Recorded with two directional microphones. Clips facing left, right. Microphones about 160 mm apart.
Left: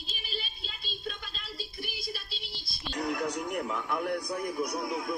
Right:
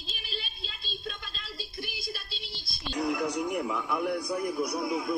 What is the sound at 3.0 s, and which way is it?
A man's voice, 5° right (ahead or behind).